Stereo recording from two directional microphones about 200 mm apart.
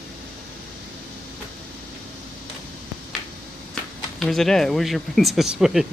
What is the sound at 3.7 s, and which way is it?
Speech, centre (ahead or behind).